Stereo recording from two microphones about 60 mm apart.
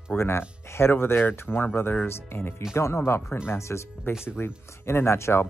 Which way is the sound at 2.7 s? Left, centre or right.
Left.